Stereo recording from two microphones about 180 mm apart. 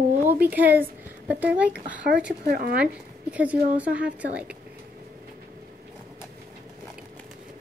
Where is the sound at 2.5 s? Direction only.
55° right (ahead or behind).